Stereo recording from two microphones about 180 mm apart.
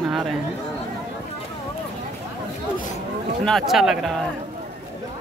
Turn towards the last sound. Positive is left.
turn(degrees=0)  # may be behind; listen again after turning